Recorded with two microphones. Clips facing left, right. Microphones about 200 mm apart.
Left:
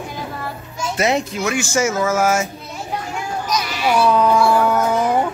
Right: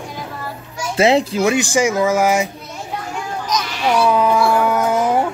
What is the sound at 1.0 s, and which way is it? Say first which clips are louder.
Speech: right 6 dB; 30° right (ahead or behind).